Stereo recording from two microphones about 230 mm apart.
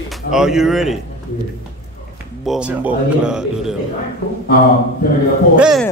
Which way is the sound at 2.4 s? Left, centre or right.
Centre.